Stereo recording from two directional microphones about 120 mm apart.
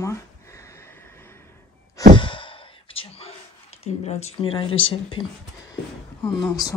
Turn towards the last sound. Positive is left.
turn(degrees=35)  # may be behind; listen again after turning